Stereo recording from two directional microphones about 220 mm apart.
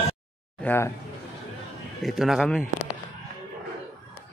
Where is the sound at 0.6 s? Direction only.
10° left (ahead or behind).